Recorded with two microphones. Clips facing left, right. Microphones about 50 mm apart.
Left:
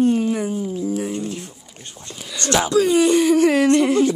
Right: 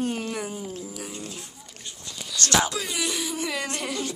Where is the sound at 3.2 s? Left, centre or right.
Left.